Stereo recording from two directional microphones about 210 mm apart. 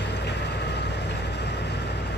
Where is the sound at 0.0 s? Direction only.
55° left (ahead or behind).